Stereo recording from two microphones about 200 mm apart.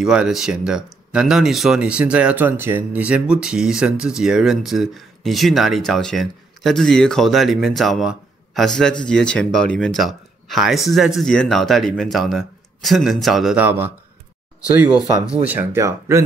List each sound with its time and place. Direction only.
0.0 s speech: 5° right (ahead or behind)
14.9 s speech: 20° left (ahead or behind)
15.4 s speech: 10° right (ahead or behind)